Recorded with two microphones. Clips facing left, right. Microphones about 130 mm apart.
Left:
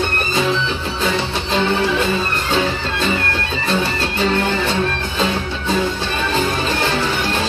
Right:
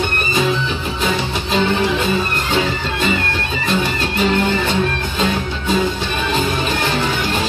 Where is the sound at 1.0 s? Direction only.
15° right (ahead or behind).